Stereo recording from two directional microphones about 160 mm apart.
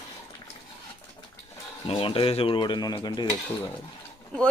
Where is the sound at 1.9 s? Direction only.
35° left (ahead or behind).